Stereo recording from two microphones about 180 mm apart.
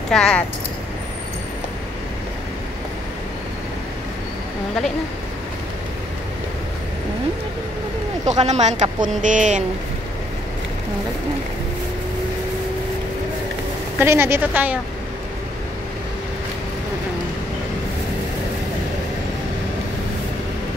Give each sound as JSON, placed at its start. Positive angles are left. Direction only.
{"t": 0.1, "sound": "speech", "side_deg": 5}
{"t": 8.3, "sound": "speech", "side_deg": -40}
{"t": 13.9, "sound": "a woman's voice", "side_deg": -10}